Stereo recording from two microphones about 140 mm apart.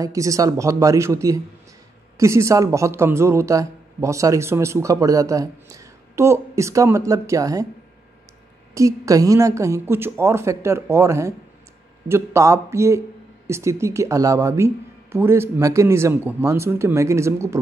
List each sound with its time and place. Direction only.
0.0 s speech: 25° right (ahead or behind)
8.7 s speech: 25° right (ahead or behind)